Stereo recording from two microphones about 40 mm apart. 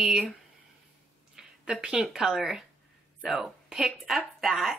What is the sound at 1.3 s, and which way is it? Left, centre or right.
A woman's voice, centre.